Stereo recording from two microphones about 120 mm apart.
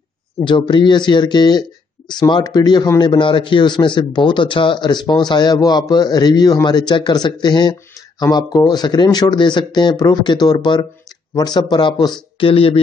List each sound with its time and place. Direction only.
0.4 s a man's voice: 40° left (ahead or behind)